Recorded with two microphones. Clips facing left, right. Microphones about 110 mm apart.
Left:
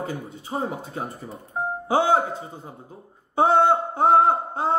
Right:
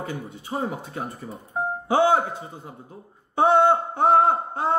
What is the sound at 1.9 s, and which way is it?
A man's voice, 25° left (ahead or behind).